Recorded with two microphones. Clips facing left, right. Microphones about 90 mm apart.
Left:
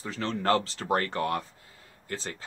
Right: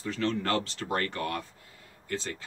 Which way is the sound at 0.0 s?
30° left (ahead or behind).